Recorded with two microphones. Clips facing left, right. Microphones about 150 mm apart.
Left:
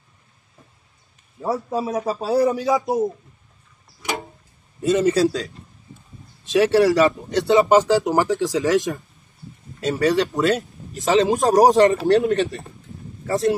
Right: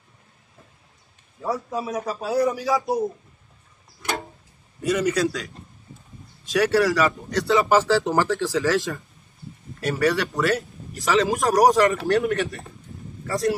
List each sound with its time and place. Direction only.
1.4 s speech: 30° left (ahead or behind)
4.8 s speech: 30° left (ahead or behind)
6.4 s speech: 25° left (ahead or behind)